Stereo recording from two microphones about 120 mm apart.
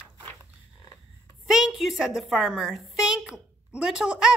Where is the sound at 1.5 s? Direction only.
5° right (ahead or behind).